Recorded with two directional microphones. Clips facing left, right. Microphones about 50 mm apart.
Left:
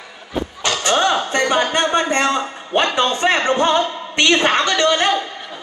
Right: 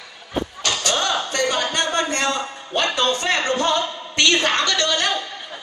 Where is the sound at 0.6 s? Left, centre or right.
Left.